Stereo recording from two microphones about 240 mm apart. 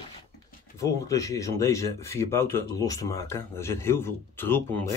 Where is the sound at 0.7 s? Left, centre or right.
Centre.